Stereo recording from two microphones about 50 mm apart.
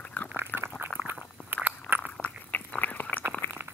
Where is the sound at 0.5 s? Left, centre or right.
Left.